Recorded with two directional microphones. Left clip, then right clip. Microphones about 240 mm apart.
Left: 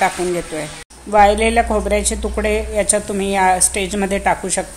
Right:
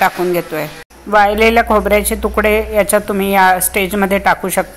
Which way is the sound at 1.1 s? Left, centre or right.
Centre.